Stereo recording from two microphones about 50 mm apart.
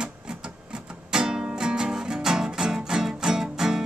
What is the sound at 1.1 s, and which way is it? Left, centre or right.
Music, centre.